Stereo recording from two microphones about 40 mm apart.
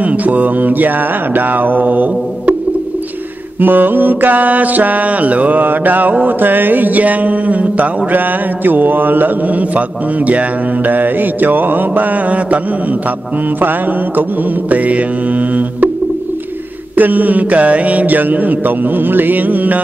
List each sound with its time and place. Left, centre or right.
0.0 s mantra: right
3.6 s mantra: right
8.6 s mantra: right
9.6 s music: right
10.9 s mantra: right
13.6 s mantra: right
14.7 s music: right
16.9 s mantra: right